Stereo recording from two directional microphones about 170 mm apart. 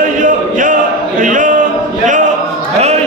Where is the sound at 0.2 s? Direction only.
50° right (ahead or behind).